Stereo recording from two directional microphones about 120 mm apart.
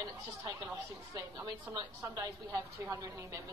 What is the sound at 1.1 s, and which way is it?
A woman's voice, 30° right (ahead or behind).